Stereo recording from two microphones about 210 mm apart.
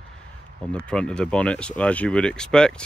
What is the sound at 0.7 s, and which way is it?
Speech, 5° left (ahead or behind).